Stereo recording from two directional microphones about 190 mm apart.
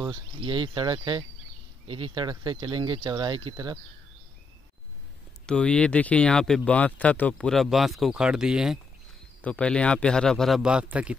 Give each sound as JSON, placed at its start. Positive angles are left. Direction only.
{"t": 0.0, "sound": "speech", "side_deg": -25}
{"t": 5.5, "sound": "speech", "side_deg": 5}